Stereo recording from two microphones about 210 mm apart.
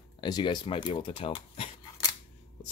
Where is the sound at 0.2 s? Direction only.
20° left (ahead or behind).